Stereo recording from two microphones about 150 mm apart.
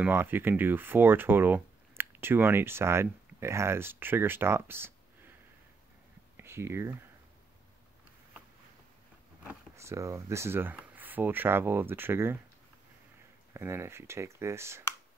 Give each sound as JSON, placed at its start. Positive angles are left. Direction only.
{"t": 0.0, "sound": "speech", "side_deg": -15}
{"t": 6.3, "sound": "speech", "side_deg": -15}
{"t": 9.8, "sound": "speech", "side_deg": -20}
{"t": 13.5, "sound": "speech", "side_deg": -15}